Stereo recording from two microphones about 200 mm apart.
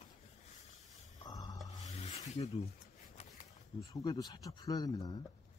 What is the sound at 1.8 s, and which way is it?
Rub, 35° left (ahead or behind).